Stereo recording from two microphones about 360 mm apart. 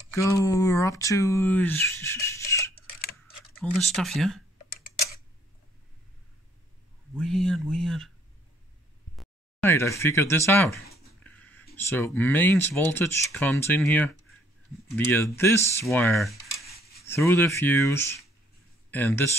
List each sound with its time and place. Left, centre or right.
0.1 s speech: centre
7.2 s speech: centre
9.1 s a sound: centre
11.8 s speech: centre
16.5 s a sound: centre
17.1 s speech: centre